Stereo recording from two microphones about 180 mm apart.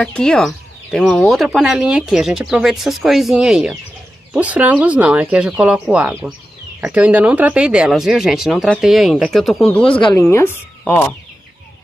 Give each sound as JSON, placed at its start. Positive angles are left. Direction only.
{"t": 0.0, "sound": "speech", "side_deg": 5}
{"t": 9.8, "sound": "speech", "side_deg": 25}
{"t": 10.3, "sound": "speech", "side_deg": 10}